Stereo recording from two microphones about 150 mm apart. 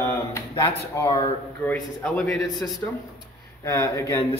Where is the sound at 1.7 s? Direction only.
10° left (ahead or behind).